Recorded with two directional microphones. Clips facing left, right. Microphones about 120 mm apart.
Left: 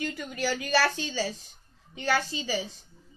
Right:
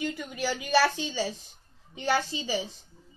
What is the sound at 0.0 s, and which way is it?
Speech, 15° right (ahead or behind).